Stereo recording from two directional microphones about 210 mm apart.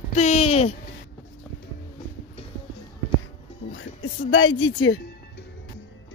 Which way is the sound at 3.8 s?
70° left (ahead or behind).